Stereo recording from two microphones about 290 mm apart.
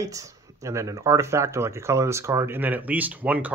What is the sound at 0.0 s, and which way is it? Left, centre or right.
Speech, centre.